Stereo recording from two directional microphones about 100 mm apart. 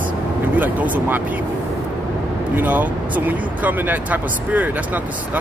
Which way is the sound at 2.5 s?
20° right (ahead or behind).